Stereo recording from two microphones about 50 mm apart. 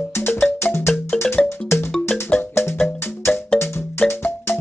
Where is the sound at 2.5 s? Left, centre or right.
Left.